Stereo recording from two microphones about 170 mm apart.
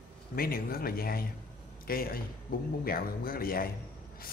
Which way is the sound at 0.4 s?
60° left (ahead or behind).